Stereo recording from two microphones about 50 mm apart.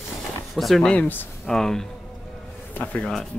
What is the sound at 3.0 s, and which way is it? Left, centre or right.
Speech, centre.